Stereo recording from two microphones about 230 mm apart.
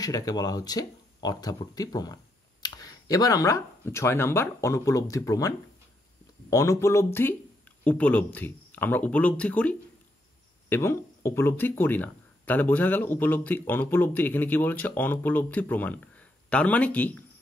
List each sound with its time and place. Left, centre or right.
0.0 s speech: centre
6.5 s speech: centre